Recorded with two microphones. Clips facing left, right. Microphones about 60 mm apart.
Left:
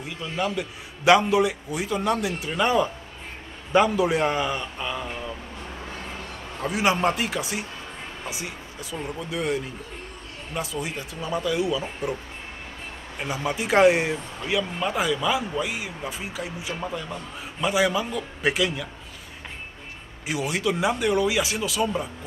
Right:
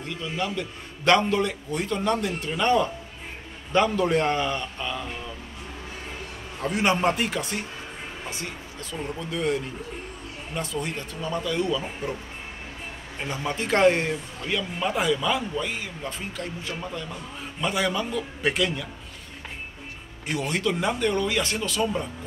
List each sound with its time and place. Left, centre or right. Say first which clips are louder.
0.0 s a man's voice: left 2 dB; centre
6.6 s a man's voice: even; centre
13.2 s a man's voice: left 2 dB; centre
20.2 s a man's voice: left 1 dB; centre